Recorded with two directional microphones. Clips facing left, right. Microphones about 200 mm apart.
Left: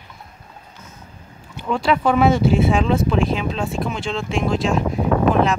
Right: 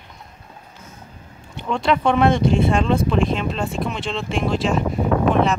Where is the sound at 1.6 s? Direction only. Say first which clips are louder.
Even; centre (ahead or behind).